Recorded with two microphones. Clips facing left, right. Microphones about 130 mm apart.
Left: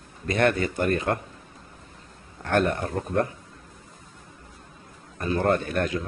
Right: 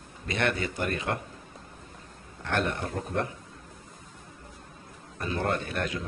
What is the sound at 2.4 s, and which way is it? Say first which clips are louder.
Speech: left 6 dB; 45° left (ahead or behind).